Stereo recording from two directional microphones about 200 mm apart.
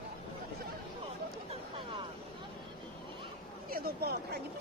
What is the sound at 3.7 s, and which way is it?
Speech, 50° right (ahead or behind).